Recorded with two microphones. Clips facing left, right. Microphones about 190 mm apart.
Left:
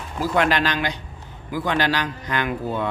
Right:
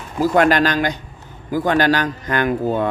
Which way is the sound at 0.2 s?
45° right (ahead or behind).